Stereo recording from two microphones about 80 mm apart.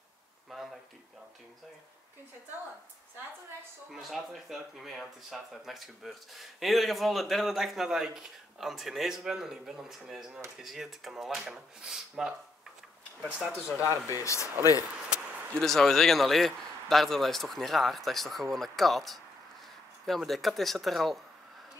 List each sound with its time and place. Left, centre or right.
0.5 s a sound: centre
3.9 s speech: centre
13.7 s speech: left
15.5 s speech: centre